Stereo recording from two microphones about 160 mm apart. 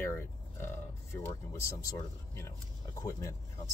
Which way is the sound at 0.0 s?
15° left (ahead or behind).